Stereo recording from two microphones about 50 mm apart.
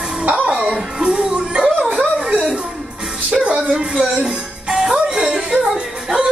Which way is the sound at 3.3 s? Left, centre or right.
Centre.